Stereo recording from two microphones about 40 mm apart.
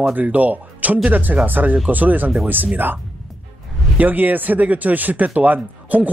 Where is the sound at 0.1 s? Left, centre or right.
Right.